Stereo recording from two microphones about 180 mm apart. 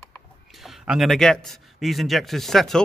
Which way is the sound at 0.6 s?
Centre (ahead or behind).